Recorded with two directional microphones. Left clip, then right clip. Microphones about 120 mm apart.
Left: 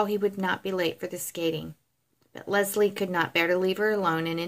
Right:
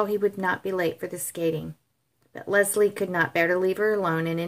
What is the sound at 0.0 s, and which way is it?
A woman's voice, 15° left (ahead or behind).